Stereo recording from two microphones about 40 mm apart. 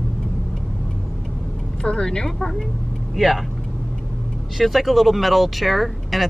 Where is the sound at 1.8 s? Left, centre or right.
Left; by 3.4 s centre.